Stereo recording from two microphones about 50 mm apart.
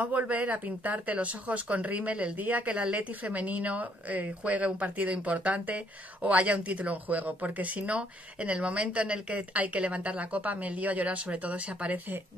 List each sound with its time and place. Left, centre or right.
0.0 s speech: right